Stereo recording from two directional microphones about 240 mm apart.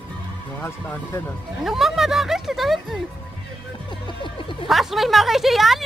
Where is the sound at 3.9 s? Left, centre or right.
Centre.